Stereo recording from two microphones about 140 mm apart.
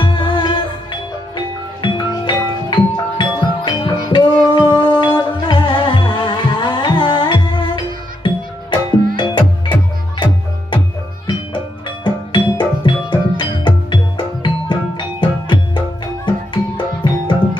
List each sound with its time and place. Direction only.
0.0 s music: 35° left (ahead or behind)